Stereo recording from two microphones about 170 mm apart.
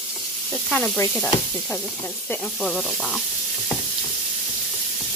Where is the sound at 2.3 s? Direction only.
Centre (ahead or behind).